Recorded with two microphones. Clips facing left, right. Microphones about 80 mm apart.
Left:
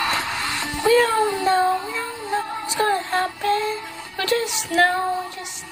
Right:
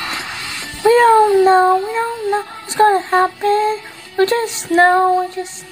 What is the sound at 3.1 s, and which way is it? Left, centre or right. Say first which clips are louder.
Music: right 8 dB; right.